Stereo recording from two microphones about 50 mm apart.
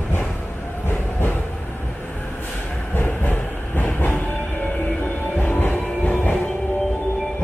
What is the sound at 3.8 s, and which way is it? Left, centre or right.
Train, left.